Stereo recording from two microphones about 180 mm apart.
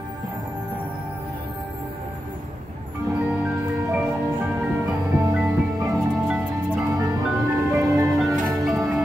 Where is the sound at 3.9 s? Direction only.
5° right (ahead or behind).